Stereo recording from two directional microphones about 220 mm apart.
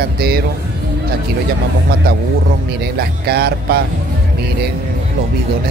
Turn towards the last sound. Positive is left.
turn(degrees=-45)  # may be behind; listen again after turning